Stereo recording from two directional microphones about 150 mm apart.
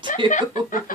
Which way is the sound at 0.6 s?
65° left (ahead or behind).